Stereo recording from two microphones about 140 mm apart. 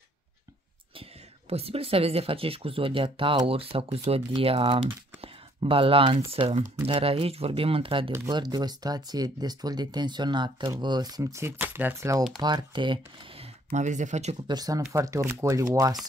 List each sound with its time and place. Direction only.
1.5 s speech: 45° right (ahead or behind)
5.2 s a sound: 40° right (ahead or behind)
6.1 s speech: 55° right (ahead or behind)
6.9 s speech: 40° right (ahead or behind); by 12.2 s 20° right (ahead or behind)
12.4 s speech: 30° right (ahead or behind)
13.7 s speech: 60° right (ahead or behind)
14.5 s speech: 25° right (ahead or behind)